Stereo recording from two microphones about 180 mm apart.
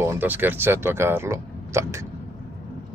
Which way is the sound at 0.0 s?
15° right (ahead or behind).